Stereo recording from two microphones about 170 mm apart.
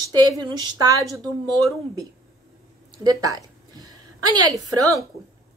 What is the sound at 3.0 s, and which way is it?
Speech, 20° right (ahead or behind).